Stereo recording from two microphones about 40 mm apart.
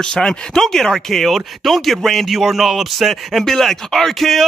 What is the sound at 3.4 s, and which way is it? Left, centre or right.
Speech, centre.